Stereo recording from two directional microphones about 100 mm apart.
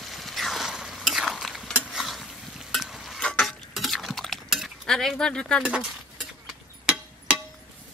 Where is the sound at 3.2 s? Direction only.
10° left (ahead or behind).